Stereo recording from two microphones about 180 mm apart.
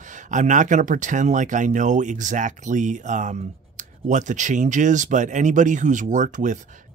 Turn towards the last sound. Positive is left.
turn(degrees=-45)  # may be behind; listen again after turning